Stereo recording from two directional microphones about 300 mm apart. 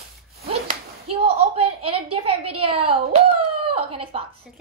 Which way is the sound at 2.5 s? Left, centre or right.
Centre.